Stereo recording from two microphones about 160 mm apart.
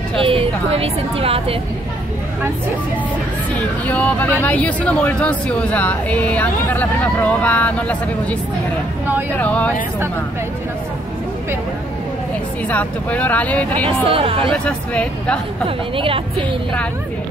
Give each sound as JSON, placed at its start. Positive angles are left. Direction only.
{"t": 0.1, "sound": "a woman's voice", "side_deg": -35}
{"t": 3.5, "sound": "speech", "side_deg": 10}
{"t": 12.6, "sound": "speech", "side_deg": 10}
{"t": 14.0, "sound": "a woman's voice", "side_deg": -35}
{"t": 14.5, "sound": "speech", "side_deg": 10}
{"t": 16.0, "sound": "a woman's voice", "side_deg": -35}